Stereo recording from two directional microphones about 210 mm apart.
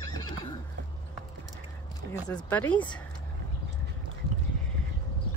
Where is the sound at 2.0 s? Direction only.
50° right (ahead or behind).